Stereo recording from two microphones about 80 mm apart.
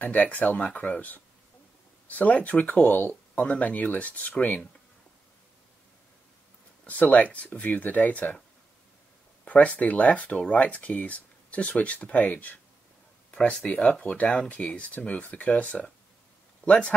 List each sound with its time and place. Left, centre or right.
0.0 s speech: left
6.9 s speech: centre
9.4 s speech: centre